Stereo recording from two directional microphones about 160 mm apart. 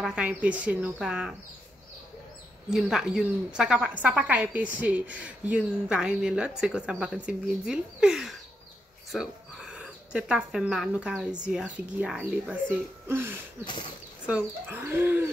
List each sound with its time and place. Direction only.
0.0 s a woman's voice: 5° right (ahead or behind)
2.7 s a woman's voice: 5° right (ahead or behind)
13.7 s speech: 30° left (ahead or behind)
14.2 s a woman's voice: 10° right (ahead or behind)